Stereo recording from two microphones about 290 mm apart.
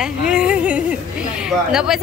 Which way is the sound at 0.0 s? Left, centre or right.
Centre.